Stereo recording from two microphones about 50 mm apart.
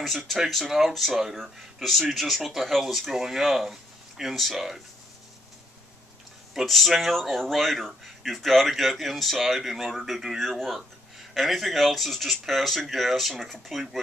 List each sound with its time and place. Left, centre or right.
0.0 s speech: centre
6.5 s speech: centre